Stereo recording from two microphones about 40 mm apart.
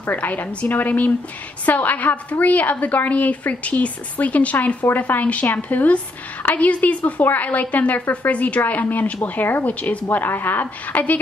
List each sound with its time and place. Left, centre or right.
0.0 s a woman's voice: left
1.7 s a woman's voice: left
4.9 s a woman's voice: left
8.3 s a woman's voice: left
9.7 s a woman's voice: left
10.1 s a woman's voice: left